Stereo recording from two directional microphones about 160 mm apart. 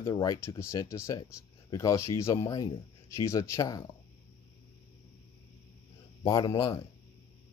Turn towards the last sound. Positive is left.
turn(degrees=20)  # may be behind; listen again after turning